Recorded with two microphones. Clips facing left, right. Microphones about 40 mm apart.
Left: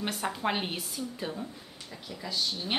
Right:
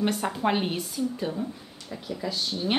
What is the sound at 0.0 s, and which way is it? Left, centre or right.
Speech, centre.